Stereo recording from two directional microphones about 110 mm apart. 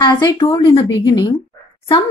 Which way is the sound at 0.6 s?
45° left (ahead or behind).